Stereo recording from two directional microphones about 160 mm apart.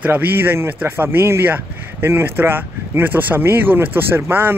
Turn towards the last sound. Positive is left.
turn(degrees=-15)  # may be behind; listen again after turning